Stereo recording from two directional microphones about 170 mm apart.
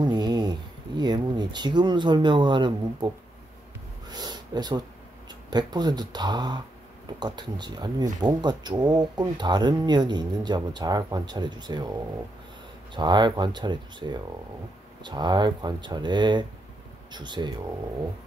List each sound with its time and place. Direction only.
0.0 s speech: 25° right (ahead or behind)
4.1 s a sound: 25° right (ahead or behind)
5.3 s speech: 25° right (ahead or behind)
12.9 s speech: 25° right (ahead or behind)